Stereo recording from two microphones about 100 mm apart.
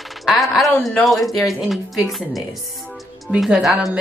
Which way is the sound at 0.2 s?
Centre (ahead or behind).